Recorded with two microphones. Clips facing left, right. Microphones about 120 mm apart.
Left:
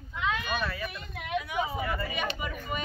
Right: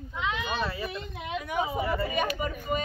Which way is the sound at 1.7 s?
25° right (ahead or behind).